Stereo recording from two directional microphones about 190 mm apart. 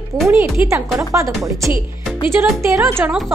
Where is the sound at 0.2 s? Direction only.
10° right (ahead or behind).